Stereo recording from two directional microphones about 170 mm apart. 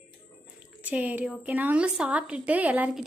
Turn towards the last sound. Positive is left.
turn(degrees=-5)  # may be behind; listen again after turning